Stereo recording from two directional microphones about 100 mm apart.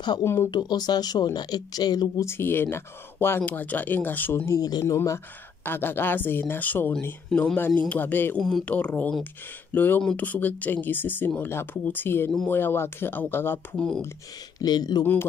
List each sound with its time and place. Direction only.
0.2 s speech: 25° left (ahead or behind)
0.5 s speech: 45° left (ahead or behind)
2.2 s speech: 25° left (ahead or behind)
4.6 s speech: 40° left (ahead or behind)
4.9 s speech: 30° left (ahead or behind)
7.2 s speech: 5° left (ahead or behind)
7.9 s speech: 20° left (ahead or behind)
8.4 s speech: 5° left (ahead or behind)
8.7 s speech: 15° left (ahead or behind)
13.7 s speech: 5° left (ahead or behind)
14.6 s speech: 45° left (ahead or behind)